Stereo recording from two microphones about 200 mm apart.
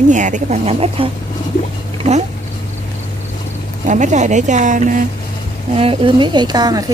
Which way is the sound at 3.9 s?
35° right (ahead or behind).